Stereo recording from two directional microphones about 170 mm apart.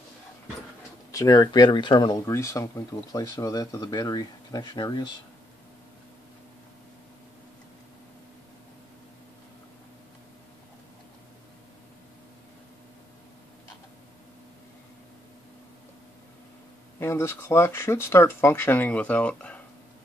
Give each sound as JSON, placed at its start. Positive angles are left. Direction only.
{"t": 1.1, "sound": "speech", "side_deg": 20}
{"t": 17.0, "sound": "speech", "side_deg": 15}